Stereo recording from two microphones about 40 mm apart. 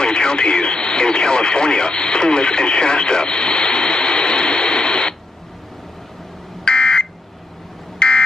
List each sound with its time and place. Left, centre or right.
0.0 s radio: left
6.6 s smoke detector: left
8.0 s a sound: left